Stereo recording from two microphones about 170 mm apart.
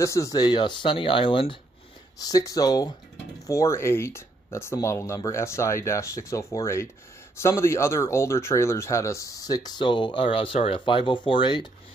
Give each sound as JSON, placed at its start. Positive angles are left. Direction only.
{"t": 0.0, "sound": "speech", "side_deg": 20}